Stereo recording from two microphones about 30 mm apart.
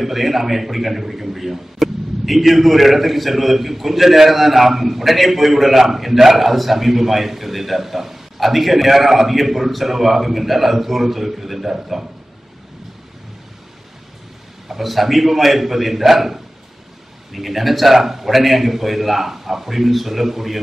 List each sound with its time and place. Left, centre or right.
0.0 s a man's voice: centre
11.7 s speech: centre
14.7 s a man's voice: centre